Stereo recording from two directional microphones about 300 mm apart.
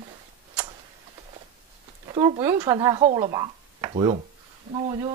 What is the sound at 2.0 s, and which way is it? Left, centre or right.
Speech, centre.